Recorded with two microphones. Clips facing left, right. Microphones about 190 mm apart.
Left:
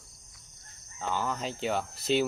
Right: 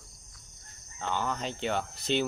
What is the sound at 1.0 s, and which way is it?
Speech, 5° left (ahead or behind).